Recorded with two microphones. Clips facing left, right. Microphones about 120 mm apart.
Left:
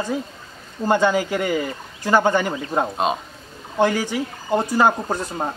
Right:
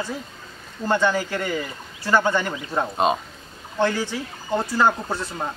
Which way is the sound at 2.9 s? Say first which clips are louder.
Right 1 dB; centre (ahead or behind).